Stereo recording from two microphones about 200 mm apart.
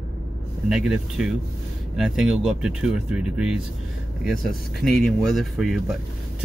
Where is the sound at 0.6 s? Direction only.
5° right (ahead or behind).